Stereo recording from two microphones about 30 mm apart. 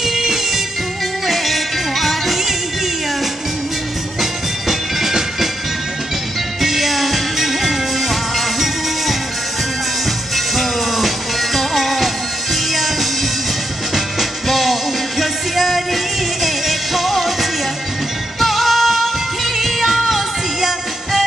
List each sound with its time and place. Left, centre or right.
0.0 s music: centre
1.2 s music: centre
4.2 s music: centre
6.6 s music: centre
10.3 s music: centre
14.5 s music: centre